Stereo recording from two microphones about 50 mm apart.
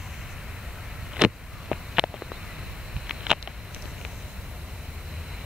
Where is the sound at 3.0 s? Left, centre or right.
Centre.